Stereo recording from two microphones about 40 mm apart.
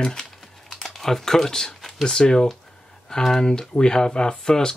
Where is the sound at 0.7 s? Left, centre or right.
Centre.